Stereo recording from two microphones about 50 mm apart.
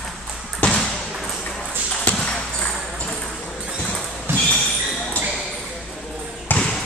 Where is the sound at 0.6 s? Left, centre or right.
Left.